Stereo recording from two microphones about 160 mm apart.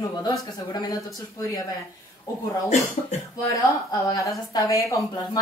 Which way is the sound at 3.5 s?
20° left (ahead or behind).